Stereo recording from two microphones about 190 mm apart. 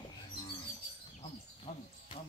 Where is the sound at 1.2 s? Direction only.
35° left (ahead or behind).